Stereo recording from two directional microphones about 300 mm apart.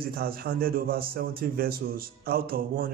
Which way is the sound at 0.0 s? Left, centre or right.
Right.